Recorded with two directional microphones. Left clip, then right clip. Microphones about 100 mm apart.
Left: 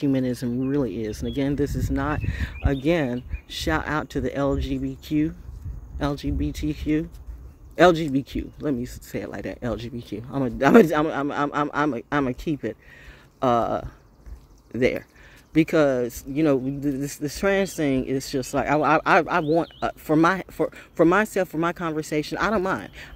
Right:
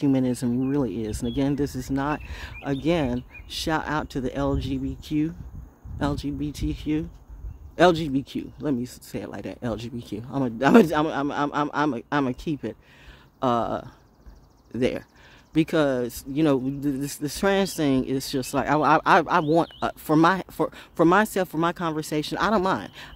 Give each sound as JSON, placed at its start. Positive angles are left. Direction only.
{"t": 0.0, "sound": "speech", "side_deg": -20}
{"t": 8.4, "sound": "speech", "side_deg": -20}